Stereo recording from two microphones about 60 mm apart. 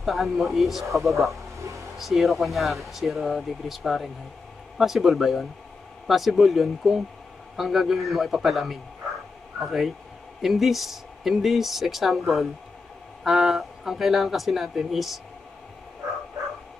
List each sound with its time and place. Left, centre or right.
0.0 s speech: centre
1.3 s a sound: right
2.0 s speech: centre